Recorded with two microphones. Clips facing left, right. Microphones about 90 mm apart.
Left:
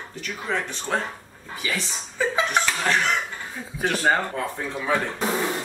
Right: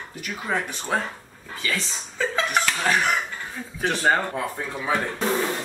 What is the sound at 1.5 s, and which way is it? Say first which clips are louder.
Speech: even; 15° left (ahead or behind).